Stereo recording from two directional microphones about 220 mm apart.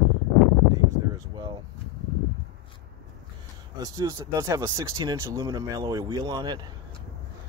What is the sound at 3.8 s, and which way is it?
Speech, 15° right (ahead or behind).